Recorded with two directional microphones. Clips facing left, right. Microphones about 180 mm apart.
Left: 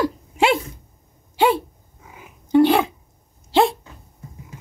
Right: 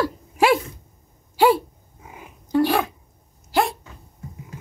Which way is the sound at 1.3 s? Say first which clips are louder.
Right 1 dB; 20° left (ahead or behind).